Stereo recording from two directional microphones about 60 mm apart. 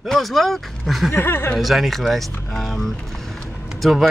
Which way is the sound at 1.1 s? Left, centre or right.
Left.